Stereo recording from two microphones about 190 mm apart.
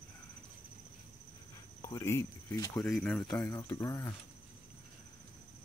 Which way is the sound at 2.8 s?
5° left (ahead or behind).